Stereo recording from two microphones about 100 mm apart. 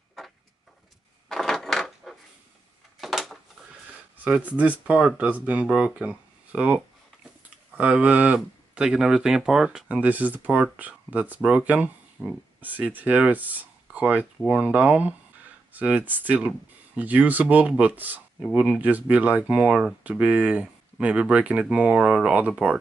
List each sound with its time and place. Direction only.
1.3 s a sound: 5° left (ahead or behind)
4.2 s speech: 15° right (ahead or behind)
12.2 s speech: 5° right (ahead or behind)
12.5 s speech: 15° right (ahead or behind)